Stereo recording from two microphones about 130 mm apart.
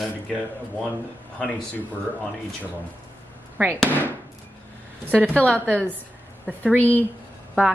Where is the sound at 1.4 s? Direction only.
10° left (ahead or behind).